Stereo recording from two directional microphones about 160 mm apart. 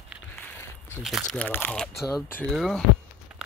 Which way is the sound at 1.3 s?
10° left (ahead or behind).